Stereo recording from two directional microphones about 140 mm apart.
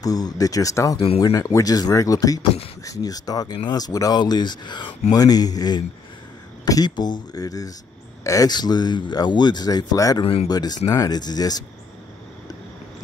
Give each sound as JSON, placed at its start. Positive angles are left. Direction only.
{"t": 0.0, "sound": "speech", "side_deg": 25}
{"t": 0.9, "sound": "speech", "side_deg": 45}
{"t": 1.2, "sound": "speech", "side_deg": 25}
{"t": 10.2, "sound": "speech", "side_deg": 45}
{"t": 10.5, "sound": "speech", "side_deg": 30}